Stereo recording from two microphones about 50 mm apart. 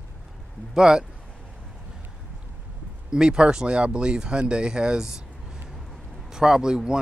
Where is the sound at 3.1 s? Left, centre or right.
Centre.